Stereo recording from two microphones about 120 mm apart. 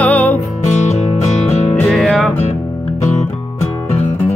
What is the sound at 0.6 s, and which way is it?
Music, 75° left (ahead or behind).